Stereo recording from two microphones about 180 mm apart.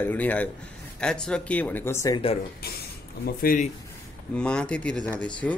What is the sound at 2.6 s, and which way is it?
Speech, 60° left (ahead or behind).